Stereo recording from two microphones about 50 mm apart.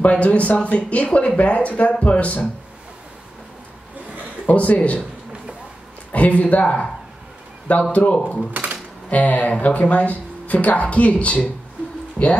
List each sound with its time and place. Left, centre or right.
0.0 s speech: left
4.5 s speech: left
6.1 s speech: left
7.9 s speech: left